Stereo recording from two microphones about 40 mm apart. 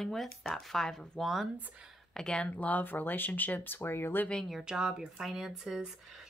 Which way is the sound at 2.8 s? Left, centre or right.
Left.